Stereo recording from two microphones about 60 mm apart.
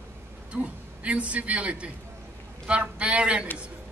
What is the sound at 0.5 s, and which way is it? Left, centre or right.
A man's voice, right.